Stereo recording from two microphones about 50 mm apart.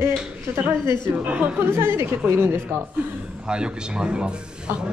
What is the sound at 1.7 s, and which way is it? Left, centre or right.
A woman's voice, right.